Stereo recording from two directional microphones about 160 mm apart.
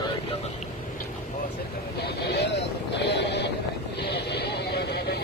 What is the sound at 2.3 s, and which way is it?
Vehicle, 90° left.